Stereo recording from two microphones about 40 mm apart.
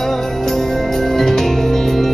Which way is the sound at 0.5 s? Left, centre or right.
Centre.